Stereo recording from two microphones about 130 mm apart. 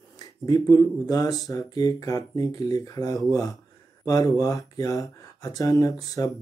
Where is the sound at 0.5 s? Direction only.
30° left (ahead or behind).